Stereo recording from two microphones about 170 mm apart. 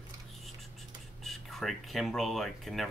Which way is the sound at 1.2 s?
Centre (ahead or behind).